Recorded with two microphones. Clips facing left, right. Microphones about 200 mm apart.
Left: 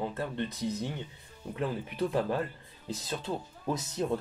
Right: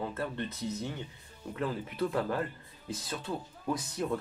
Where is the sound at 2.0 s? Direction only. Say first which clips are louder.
Left 2 dB; 20° left (ahead or behind).